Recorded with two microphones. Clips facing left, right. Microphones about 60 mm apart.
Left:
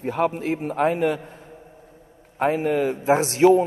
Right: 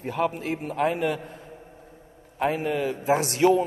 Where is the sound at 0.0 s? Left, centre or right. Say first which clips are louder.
Left 3 dB; left.